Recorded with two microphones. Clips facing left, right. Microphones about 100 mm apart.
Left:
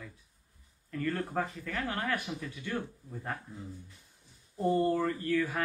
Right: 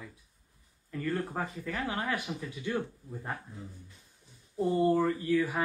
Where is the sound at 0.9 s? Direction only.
10° right (ahead or behind).